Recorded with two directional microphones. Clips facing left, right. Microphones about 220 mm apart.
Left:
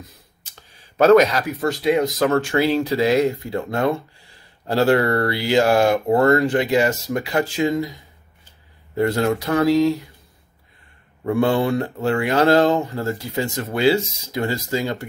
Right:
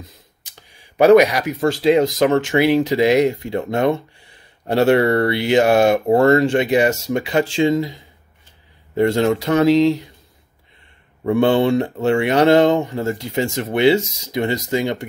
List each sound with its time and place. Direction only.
0.5 s a sound: 15° right (ahead or behind)
1.6 s speech: 25° right (ahead or behind)
11.2 s speech: 25° right (ahead or behind)